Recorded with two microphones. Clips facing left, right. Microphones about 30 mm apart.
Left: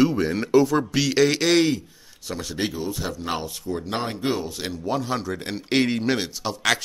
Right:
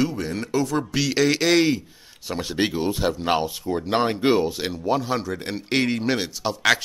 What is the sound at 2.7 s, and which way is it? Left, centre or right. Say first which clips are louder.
Speech: right 5 dB; right.